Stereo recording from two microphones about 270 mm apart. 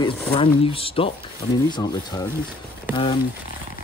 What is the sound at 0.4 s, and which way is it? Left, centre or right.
Speech, centre.